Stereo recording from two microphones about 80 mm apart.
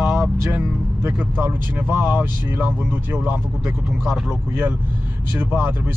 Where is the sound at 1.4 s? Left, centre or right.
Right.